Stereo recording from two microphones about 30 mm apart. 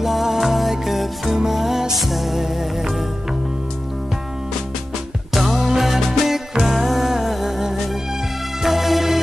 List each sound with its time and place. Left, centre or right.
0.0 s music: centre
5.3 s music: centre